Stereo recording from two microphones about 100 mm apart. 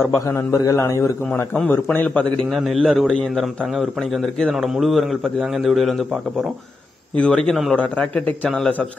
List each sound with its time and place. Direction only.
0.0 s a man's voice: 30° left (ahead or behind)
2.5 s a man's voice: centre (ahead or behind)
7.2 s a man's voice: 10° left (ahead or behind)